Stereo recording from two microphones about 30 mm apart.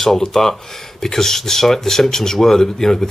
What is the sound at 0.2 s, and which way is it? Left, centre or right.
Speech, centre.